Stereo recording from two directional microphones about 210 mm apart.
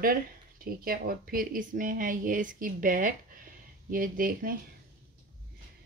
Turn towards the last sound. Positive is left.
turn(degrees=-40)  # may be behind; listen again after turning